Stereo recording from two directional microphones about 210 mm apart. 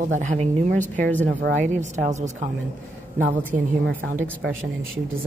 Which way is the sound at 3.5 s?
35° right (ahead or behind).